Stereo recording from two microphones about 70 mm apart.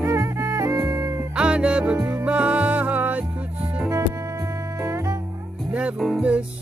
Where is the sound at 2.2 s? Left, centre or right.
Centre.